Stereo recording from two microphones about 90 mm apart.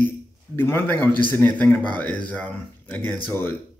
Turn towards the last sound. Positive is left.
turn(degrees=25)  # may be behind; listen again after turning